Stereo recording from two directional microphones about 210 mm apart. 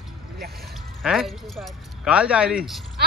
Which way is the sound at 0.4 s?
45° right (ahead or behind).